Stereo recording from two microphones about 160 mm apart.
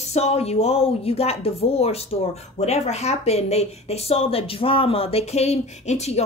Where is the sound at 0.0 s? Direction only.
40° left (ahead or behind).